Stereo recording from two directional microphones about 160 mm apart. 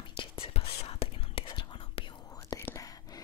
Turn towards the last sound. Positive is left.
turn(degrees=20)  # may be behind; listen again after turning